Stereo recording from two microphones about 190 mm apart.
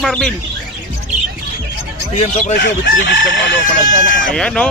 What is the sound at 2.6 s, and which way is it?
Chicken, 70° left (ahead or behind).